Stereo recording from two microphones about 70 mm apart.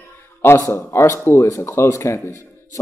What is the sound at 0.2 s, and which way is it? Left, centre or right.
A man's voice, left.